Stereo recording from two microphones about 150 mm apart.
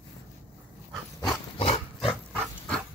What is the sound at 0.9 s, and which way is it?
Dog, centre (ahead or behind).